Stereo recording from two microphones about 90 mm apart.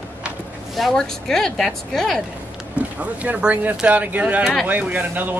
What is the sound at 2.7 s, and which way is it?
Speech, 15° right (ahead or behind).